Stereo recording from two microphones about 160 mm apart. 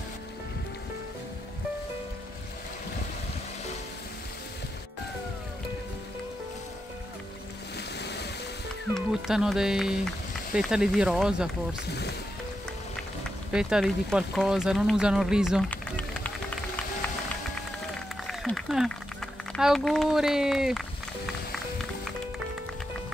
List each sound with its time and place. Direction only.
8.0 s music: 90° left
8.9 s speech: 5° right (ahead or behind)
13.5 s speech: 5° right (ahead or behind)
15.7 s run: 10° left (ahead or behind)
18.2 s a sound: centre (ahead or behind)
19.5 s speech: centre (ahead or behind)